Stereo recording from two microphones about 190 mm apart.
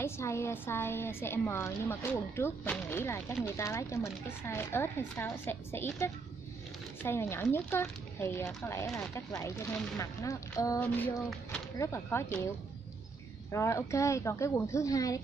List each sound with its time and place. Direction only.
0.0 s a woman's voice: 15° left (ahead or behind)
13.5 s a woman's voice: 15° left (ahead or behind)